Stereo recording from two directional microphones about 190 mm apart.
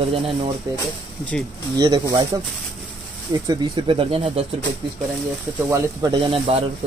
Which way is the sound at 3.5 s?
25° right (ahead or behind).